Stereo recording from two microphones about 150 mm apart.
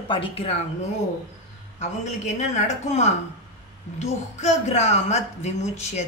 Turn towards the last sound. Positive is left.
turn(degrees=50)  # may be behind; listen again after turning